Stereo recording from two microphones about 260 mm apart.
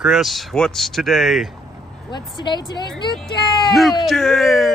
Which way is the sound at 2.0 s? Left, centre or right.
Centre.